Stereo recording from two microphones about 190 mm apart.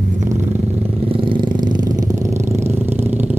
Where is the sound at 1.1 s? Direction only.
25° right (ahead or behind).